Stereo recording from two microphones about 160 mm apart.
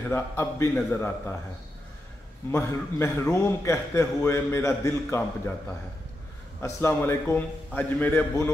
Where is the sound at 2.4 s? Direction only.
15° left (ahead or behind).